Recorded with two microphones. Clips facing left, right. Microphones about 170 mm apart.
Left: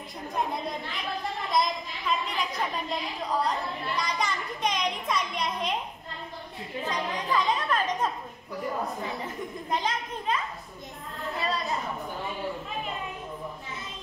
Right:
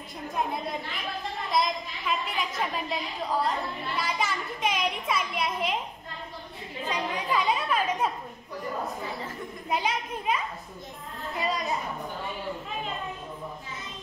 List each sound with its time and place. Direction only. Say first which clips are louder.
1.5 s a child's voice: even; centre (ahead or behind)
6.9 s a woman's voice: right 1 dB; 10° right (ahead or behind)
9.7 s a child's voice: right 2 dB; 10° right (ahead or behind)